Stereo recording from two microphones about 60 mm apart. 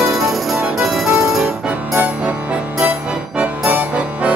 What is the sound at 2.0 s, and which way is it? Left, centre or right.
Music, right.